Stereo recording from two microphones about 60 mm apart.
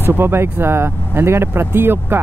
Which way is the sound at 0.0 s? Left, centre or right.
Right.